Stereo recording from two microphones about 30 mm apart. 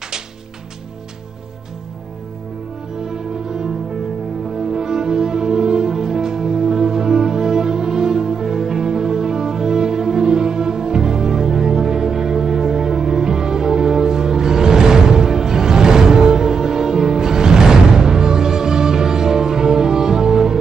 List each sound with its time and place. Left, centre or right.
4.6 s music: centre